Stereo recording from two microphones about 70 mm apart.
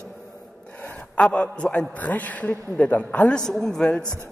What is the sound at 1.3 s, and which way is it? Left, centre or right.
A man's voice, centre.